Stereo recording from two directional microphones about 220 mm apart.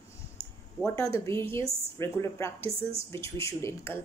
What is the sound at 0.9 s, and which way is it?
Speech, 15° left (ahead or behind).